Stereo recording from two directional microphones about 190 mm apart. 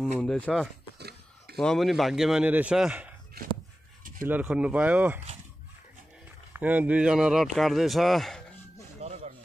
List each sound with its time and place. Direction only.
0.0 s speech: 5° left (ahead or behind)
0.9 s a sound: 60° right (ahead or behind)
1.6 s speech: centre (ahead or behind)
4.2 s speech: 10° right (ahead or behind)
6.5 s speech: 10° right (ahead or behind)
9.0 s a sound: 35° right (ahead or behind)